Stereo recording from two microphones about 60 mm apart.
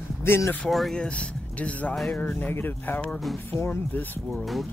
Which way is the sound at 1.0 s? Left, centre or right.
Left.